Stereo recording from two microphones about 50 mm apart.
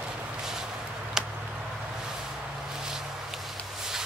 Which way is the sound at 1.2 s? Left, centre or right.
Centre.